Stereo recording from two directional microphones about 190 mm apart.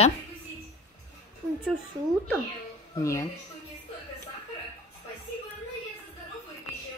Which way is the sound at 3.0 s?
15° left (ahead or behind).